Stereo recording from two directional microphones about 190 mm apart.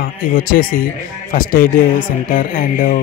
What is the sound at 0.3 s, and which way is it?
Speech, 45° left (ahead or behind).